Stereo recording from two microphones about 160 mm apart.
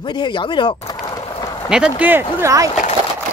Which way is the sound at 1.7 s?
5° right (ahead or behind).